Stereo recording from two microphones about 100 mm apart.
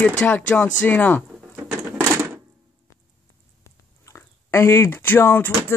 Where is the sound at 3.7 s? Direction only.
30° left (ahead or behind).